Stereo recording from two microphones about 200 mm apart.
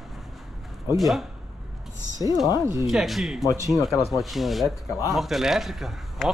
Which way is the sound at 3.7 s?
Centre (ahead or behind).